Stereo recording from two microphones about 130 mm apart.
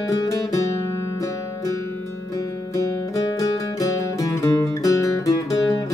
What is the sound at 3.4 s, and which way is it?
Music, 25° left (ahead or behind).